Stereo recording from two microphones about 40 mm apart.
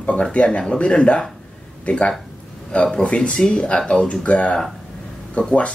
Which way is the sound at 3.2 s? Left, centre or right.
Centre.